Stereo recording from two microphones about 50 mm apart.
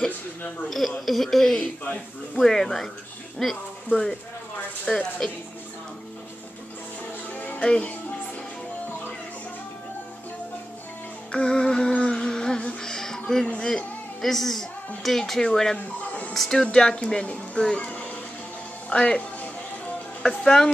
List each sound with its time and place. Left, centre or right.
0.7 s speech: centre
7.3 s music: left
7.6 s speech: centre
11.3 s music: centre
13.7 s a woman's voice: centre
16.1 s music: left
16.3 s speech: centre
16.6 s speech: centre